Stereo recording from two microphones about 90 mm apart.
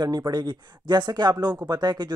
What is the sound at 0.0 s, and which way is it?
A man's voice, 50° right (ahead or behind).